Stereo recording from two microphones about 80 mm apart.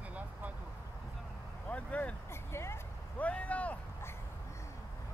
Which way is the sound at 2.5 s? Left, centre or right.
Left.